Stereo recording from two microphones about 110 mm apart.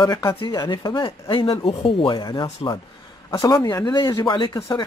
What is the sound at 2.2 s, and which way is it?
Speech, 40° left (ahead or behind).